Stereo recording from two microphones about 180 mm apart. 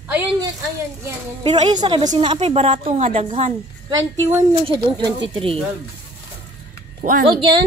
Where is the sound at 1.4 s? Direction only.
35° right (ahead or behind).